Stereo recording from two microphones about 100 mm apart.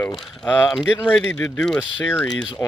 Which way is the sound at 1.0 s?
10° left (ahead or behind).